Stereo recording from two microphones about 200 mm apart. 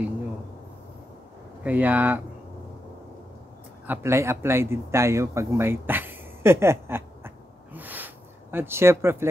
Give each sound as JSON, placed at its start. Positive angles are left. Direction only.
{"t": 1.6, "sound": "speech", "side_deg": -10}
{"t": 3.8, "sound": "a man's voice", "side_deg": -10}